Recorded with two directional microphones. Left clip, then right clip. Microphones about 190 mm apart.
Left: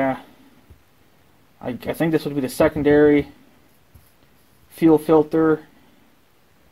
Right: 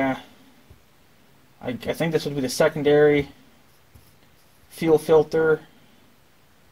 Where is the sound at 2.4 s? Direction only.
40° left (ahead or behind).